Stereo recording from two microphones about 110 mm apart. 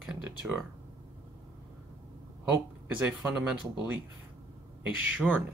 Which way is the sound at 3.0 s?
10° right (ahead or behind).